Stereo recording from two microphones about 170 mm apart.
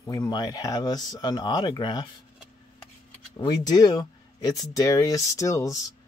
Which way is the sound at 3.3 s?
25° left (ahead or behind).